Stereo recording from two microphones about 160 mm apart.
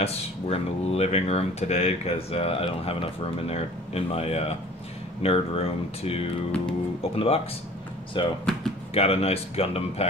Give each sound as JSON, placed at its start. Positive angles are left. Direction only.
{"t": 0.0, "sound": "speech", "side_deg": 40}